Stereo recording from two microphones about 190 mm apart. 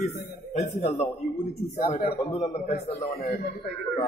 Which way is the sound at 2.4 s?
40° left (ahead or behind).